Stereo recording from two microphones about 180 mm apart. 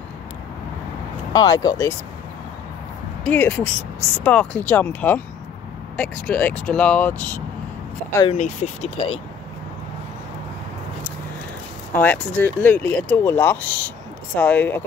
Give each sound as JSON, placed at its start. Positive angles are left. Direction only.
{"t": 1.3, "sound": "speech", "side_deg": 20}
{"t": 3.3, "sound": "speech", "side_deg": 10}
{"t": 8.3, "sound": "speech", "side_deg": 35}
{"t": 11.9, "sound": "speech", "side_deg": 10}